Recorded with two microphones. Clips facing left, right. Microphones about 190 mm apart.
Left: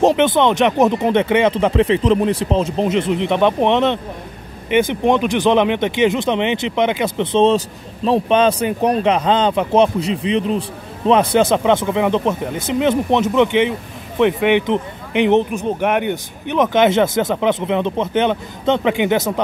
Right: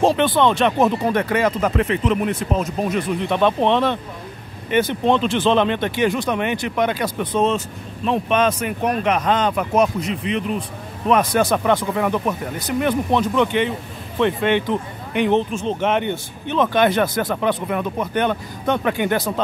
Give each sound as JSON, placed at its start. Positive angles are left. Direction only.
{"t": 0.0, "sound": "speech", "side_deg": 20}